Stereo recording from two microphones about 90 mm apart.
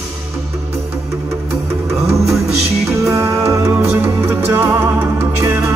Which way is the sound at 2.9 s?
35° right (ahead or behind).